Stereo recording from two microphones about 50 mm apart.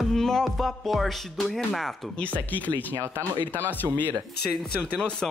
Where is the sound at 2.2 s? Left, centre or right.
Left.